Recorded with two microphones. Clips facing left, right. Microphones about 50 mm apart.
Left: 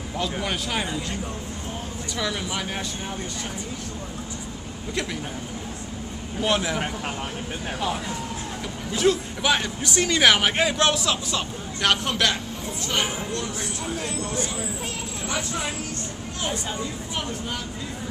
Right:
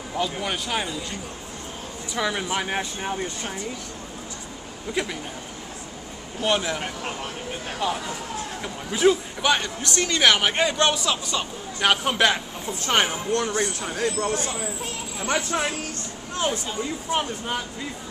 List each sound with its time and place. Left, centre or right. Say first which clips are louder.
0.1 s a man's voice: right 1 dB; centre
2.1 s speech: right 3 dB; right
6.4 s a man's voice: even; centre
7.8 s speech: right 2 dB; centre
8.9 s a man's voice: right 2 dB; centre
9.4 s a man's voice: even; centre
12.8 s speech: right 5 dB; right
17.1 s speech: right 7 dB; right